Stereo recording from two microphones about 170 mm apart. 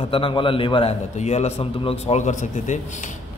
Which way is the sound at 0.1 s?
30° left (ahead or behind).